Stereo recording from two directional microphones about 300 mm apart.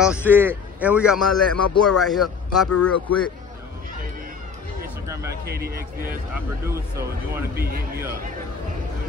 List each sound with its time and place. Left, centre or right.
0.0 s a man's voice: centre
5.4 s a man's voice: right
6.3 s speech: centre
7.5 s a man's voice: right